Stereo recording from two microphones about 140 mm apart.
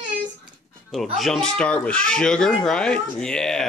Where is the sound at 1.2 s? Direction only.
5° left (ahead or behind).